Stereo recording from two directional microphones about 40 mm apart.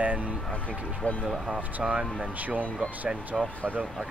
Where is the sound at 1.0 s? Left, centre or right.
Left.